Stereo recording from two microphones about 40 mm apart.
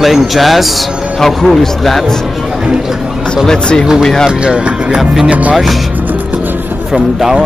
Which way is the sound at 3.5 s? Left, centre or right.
Centre.